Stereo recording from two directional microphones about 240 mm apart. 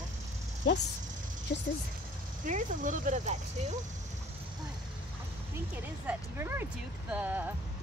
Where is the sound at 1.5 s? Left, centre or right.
Left.